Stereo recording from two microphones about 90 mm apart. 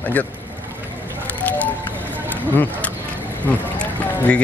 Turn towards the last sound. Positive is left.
turn(degrees=20)  # may be behind; listen again after turning